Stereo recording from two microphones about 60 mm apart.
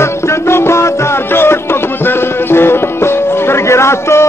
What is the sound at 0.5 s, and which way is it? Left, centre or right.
Music, left.